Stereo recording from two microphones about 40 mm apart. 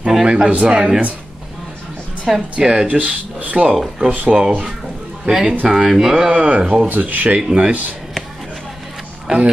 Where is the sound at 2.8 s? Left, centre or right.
Right.